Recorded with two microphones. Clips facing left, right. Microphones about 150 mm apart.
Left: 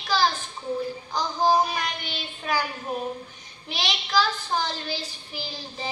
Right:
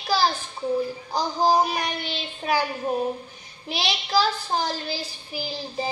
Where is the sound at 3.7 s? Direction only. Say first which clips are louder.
Right 3 dB; 35° right (ahead or behind).